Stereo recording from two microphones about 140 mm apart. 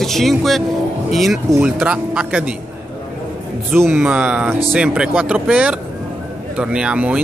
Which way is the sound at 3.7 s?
15° right (ahead or behind).